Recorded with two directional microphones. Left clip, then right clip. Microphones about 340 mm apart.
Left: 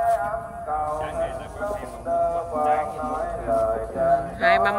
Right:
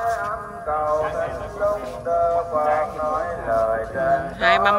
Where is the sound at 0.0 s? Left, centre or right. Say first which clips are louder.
Left 1 dB; centre.